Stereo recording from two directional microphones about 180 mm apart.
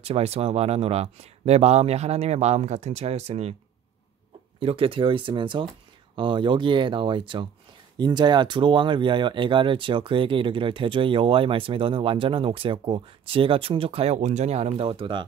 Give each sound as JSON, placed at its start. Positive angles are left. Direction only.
{"t": 0.0, "sound": "speech", "side_deg": -35}
{"t": 4.6, "sound": "speech", "side_deg": -30}